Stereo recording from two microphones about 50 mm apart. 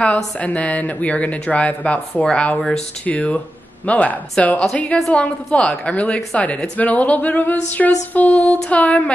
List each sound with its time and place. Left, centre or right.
0.0 s a woman's voice: left